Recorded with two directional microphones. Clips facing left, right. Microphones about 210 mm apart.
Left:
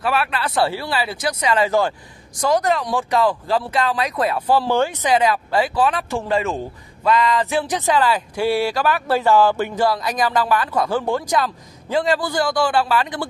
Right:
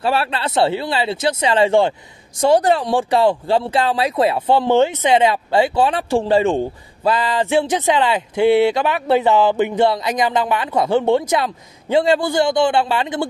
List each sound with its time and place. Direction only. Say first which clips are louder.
0.0 s speech: right 2 dB; 30° right (ahead or behind)